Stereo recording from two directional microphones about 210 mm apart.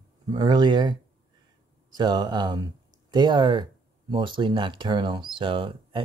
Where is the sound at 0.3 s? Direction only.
20° right (ahead or behind).